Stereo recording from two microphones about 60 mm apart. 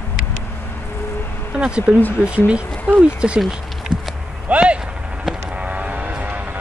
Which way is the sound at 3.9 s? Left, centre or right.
Centre.